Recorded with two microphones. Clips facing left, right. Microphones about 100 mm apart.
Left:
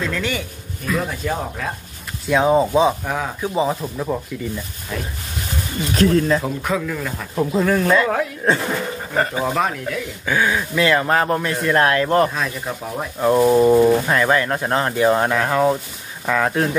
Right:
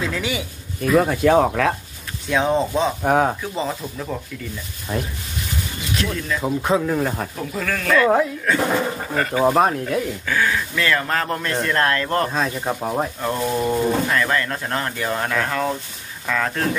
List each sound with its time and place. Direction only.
0.0 s a man's voice: 10° right (ahead or behind)
1.1 s speech: 70° right (ahead or behind); by 1.7 s 85° right
2.2 s speech: 5° left (ahead or behind)
3.0 s speech: 50° right (ahead or behind)
3.5 s speech: 15° left (ahead or behind)
5.9 s speech: 40° left (ahead or behind)
6.6 s speech: 30° right (ahead or behind)
7.3 s speech: 25° left (ahead or behind)
9.5 s speech: 35° right (ahead or behind)
10.2 s speech: 20° left (ahead or behind)
12.3 s speech: 30° right (ahead or behind)
13.2 s speech: 15° left (ahead or behind)